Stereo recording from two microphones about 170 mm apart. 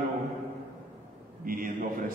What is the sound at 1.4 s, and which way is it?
Speech, 55° right (ahead or behind).